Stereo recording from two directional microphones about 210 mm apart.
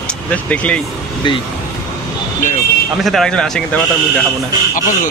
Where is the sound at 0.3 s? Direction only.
5° left (ahead or behind).